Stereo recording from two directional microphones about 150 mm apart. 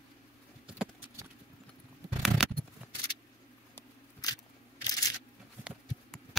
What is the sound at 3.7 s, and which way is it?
Camera, 25° left (ahead or behind).